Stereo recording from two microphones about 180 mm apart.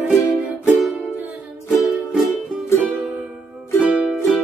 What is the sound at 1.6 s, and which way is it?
Music, 15° left (ahead or behind).